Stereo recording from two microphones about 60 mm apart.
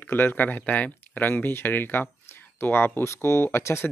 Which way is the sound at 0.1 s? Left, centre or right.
Left.